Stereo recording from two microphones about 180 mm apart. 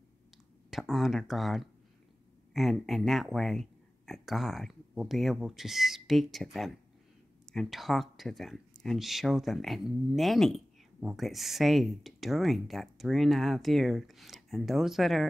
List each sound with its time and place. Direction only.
0.7 s speech: centre (ahead or behind)